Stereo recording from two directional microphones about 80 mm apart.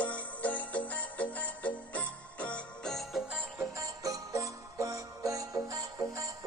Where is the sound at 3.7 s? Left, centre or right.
Right.